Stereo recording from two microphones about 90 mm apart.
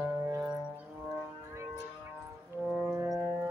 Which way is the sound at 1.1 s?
30° right (ahead or behind).